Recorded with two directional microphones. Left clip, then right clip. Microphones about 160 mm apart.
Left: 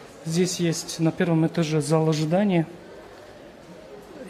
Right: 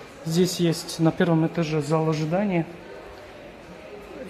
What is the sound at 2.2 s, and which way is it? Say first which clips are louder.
Speech: left 2 dB; 75° left (ahead or behind).